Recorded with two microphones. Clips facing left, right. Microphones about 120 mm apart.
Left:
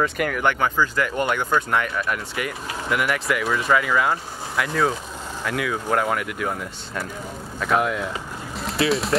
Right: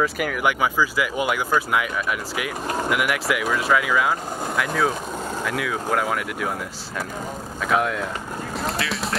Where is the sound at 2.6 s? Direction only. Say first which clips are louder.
Right 6 dB; 45° right (ahead or behind).